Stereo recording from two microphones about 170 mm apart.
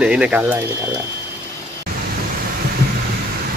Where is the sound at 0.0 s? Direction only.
5° right (ahead or behind).